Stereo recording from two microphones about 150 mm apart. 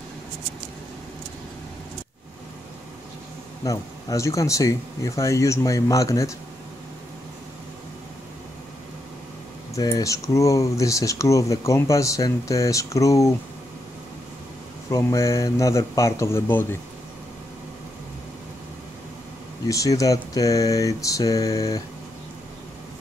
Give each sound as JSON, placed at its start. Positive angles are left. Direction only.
{"t": 3.6, "sound": "speech", "side_deg": 20}
{"t": 9.8, "sound": "speech", "side_deg": 25}
{"t": 14.9, "sound": "speech", "side_deg": 20}
{"t": 19.7, "sound": "speech", "side_deg": 20}